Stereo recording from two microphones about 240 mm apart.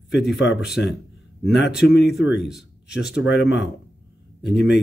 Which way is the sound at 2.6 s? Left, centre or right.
Left.